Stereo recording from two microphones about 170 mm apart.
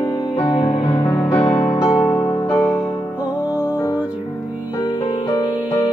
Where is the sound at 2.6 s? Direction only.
15° left (ahead or behind).